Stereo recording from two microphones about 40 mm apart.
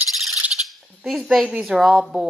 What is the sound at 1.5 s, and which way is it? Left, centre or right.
Speech, centre.